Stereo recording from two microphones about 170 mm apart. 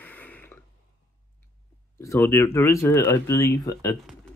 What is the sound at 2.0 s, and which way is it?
Speech, 15° left (ahead or behind).